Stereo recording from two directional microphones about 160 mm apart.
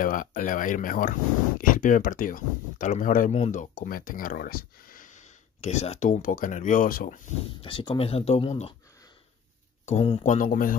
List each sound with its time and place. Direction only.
0.0 s speech: 60° left (ahead or behind)
3.7 s speech: 60° left (ahead or behind)
7.6 s speech: 35° left (ahead or behind)
9.8 s speech: 40° left (ahead or behind)
10.2 s speech: 60° left (ahead or behind)